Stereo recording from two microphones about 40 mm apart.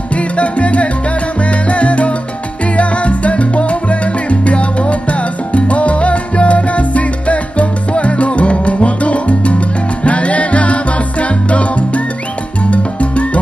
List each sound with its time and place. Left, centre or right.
0.1 s salsa music: left
2.7 s music: left
5.5 s salsa music: left
10.0 s music: left